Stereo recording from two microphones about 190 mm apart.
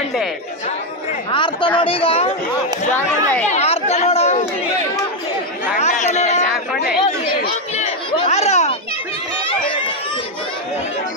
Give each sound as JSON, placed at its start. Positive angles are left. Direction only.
{"t": 1.3, "sound": "speech", "side_deg": 25}
{"t": 3.0, "sound": "speech", "side_deg": 10}
{"t": 3.4, "sound": "chatter", "side_deg": 35}
{"t": 5.8, "sound": "chatter", "side_deg": 35}
{"t": 7.7, "sound": "chatter", "side_deg": 30}
{"t": 9.5, "sound": "run", "side_deg": 25}